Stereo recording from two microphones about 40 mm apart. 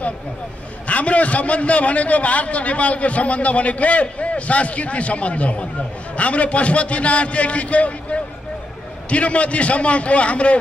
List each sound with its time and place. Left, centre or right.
0.8 s a man's voice: left